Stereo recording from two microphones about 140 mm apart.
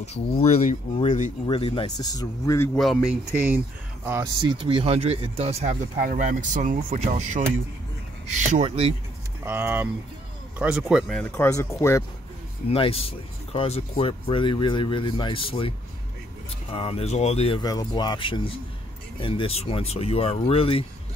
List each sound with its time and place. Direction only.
0.0 s speech: 50° left (ahead or behind)
2.0 s speech: 25° left (ahead or behind)
2.7 s speech: centre (ahead or behind)
3.4 s speech: 15° right (ahead or behind)
4.6 s speech: 45° right (ahead or behind); by 8.6 s 60° right (ahead or behind)
8.6 s speech: 45° right (ahead or behind)
9.4 s speech: 15° right (ahead or behind)
11.1 s speech: 15° left (ahead or behind)
12.6 s speech: 40° left (ahead or behind)
16.7 s speech: 45° left (ahead or behind)
17.6 s speech: 30° left (ahead or behind)